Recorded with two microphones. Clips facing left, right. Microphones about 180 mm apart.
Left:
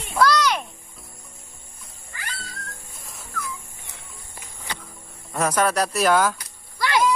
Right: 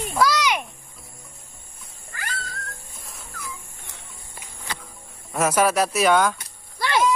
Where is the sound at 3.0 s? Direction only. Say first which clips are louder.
Even; centre (ahead or behind).